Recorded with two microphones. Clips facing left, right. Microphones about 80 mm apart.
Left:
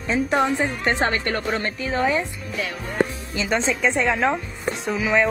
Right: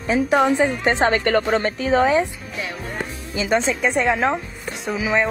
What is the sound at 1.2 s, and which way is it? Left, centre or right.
A woman's voice, right.